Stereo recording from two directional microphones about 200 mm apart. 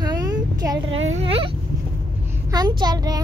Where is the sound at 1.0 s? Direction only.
30° right (ahead or behind).